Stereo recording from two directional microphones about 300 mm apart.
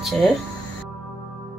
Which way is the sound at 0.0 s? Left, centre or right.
Centre.